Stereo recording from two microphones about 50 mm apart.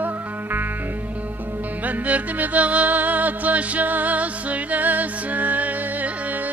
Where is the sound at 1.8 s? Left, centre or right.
Right.